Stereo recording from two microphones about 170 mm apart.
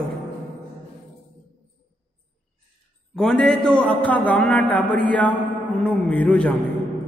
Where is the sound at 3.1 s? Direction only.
5° left (ahead or behind).